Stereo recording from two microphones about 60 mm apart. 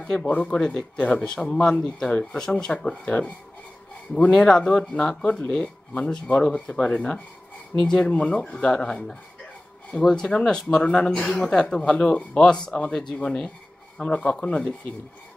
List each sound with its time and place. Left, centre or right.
0.0 s speech: centre
4.3 s speech: centre